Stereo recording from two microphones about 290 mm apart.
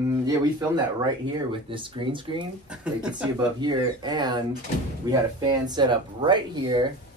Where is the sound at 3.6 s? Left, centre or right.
Centre.